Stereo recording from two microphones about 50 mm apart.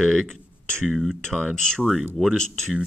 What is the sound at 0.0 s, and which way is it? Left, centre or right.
Speech, centre.